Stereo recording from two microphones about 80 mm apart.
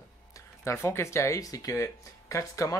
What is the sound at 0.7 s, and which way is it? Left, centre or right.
Speech, left.